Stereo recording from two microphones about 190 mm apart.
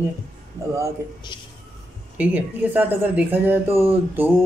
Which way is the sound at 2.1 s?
10° right (ahead or behind).